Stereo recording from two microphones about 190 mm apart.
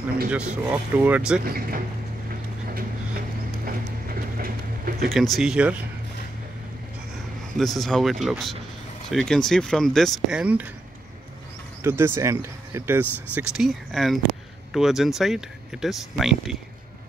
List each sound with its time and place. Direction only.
0.3 s speech: 5° right (ahead or behind)
1.4 s speech: 50° right (ahead or behind)
3.6 s a sound: 50° right (ahead or behind)
5.1 s speech: centre (ahead or behind)
7.5 s speech: centre (ahead or behind)
11.8 s speech: 15° right (ahead or behind)